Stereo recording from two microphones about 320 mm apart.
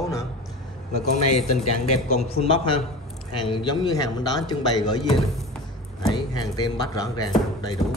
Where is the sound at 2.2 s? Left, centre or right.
Centre.